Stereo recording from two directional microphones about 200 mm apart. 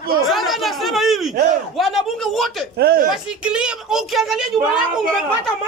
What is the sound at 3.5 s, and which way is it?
Speech, 5° right (ahead or behind).